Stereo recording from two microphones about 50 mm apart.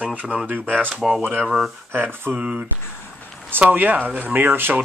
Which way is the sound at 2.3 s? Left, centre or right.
Right.